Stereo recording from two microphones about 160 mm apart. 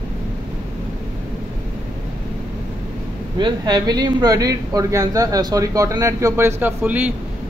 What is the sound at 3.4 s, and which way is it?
Speech, 30° right (ahead or behind).